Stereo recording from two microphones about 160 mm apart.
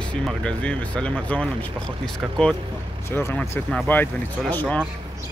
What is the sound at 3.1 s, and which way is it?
Speech, 15° left (ahead or behind).